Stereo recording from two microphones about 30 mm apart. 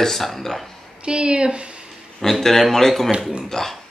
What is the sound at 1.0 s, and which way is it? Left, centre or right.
Speech, right.